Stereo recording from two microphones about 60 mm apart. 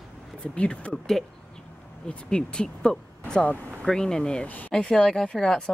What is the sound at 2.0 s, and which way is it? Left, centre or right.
Speech, centre.